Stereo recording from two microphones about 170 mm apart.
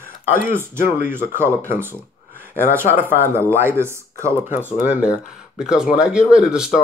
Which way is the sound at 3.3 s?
15° right (ahead or behind).